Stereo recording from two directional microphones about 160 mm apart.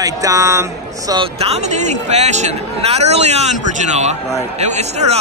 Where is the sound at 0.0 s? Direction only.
20° right (ahead or behind).